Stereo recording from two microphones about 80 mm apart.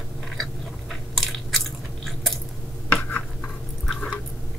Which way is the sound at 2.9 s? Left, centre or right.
Centre.